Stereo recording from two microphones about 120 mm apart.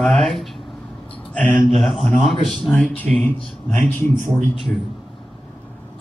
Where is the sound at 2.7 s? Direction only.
15° left (ahead or behind).